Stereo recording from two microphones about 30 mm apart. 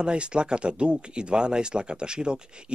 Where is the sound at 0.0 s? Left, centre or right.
Right.